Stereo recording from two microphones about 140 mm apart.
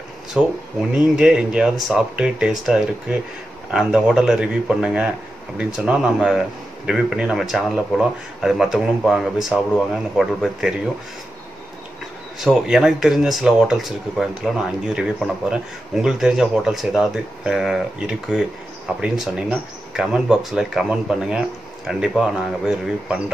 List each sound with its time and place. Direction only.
0.3 s speech: 5° right (ahead or behind)
12.4 s speech: 5° right (ahead or behind)